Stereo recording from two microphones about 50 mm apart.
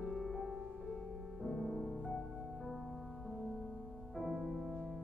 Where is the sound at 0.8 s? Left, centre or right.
Centre.